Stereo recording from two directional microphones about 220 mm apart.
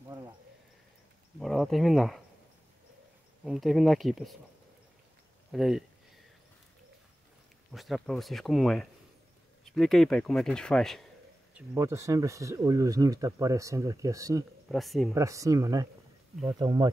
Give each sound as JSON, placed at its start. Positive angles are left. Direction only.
{"t": 1.4, "sound": "speech", "side_deg": 0}
{"t": 3.4, "sound": "speech", "side_deg": 0}
{"t": 5.5, "sound": "speech", "side_deg": 0}
{"t": 7.7, "sound": "speech", "side_deg": 0}
{"t": 11.5, "sound": "speech", "side_deg": -15}
{"t": 14.7, "sound": "speech", "side_deg": 0}
{"t": 15.1, "sound": "speech", "side_deg": -15}